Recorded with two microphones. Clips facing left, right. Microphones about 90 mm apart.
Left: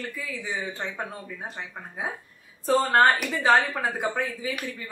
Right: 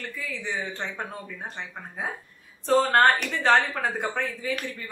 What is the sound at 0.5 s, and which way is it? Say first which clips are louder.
Speech: right 1 dB; 5° left (ahead or behind).